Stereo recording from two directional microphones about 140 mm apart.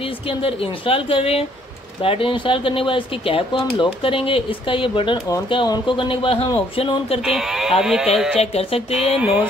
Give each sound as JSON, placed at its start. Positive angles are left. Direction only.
{"t": 0.3, "sound": "speech", "side_deg": 40}
{"t": 7.2, "sound": "speech", "side_deg": -5}
{"t": 8.4, "sound": "speech", "side_deg": 45}
{"t": 9.2, "sound": "speech", "side_deg": -10}